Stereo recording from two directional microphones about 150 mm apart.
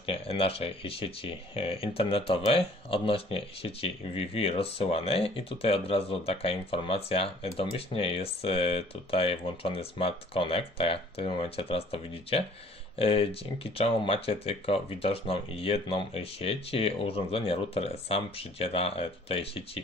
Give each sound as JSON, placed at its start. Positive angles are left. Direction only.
{"t": 0.0, "sound": "speech", "side_deg": 40}